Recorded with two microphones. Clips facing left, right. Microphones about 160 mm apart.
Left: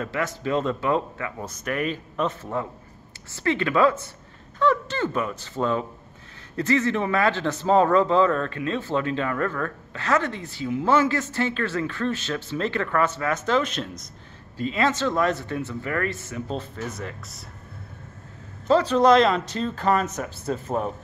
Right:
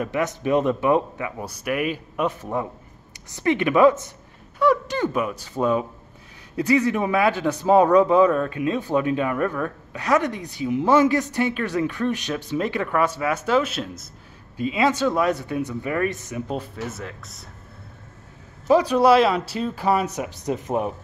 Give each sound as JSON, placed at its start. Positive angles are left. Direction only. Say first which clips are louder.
{"t": 0.0, "sound": "speech", "louder": "right 3 dB", "side_deg": -20}
{"t": 18.7, "sound": "speech", "louder": "right 1 dB", "side_deg": -10}